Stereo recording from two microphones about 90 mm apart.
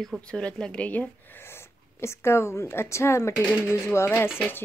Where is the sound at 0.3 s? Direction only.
10° left (ahead or behind).